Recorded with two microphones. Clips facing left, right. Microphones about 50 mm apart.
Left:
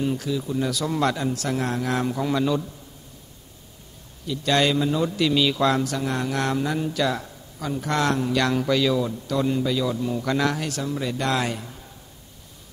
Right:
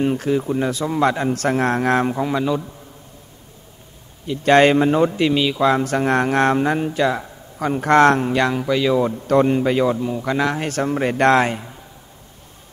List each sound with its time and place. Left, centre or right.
0.0 s a man's voice: right
2.2 s speech: centre
4.3 s a man's voice: right
5.4 s speech: centre
5.9 s a man's voice: right
7.5 s a man's voice: right
8.4 s speech: centre
9.0 s a man's voice: right
9.9 s a man's voice: right
11.4 s speech: right